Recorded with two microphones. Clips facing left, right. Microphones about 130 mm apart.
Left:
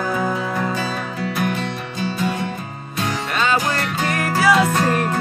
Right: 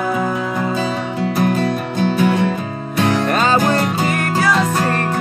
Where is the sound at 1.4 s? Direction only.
40° right (ahead or behind).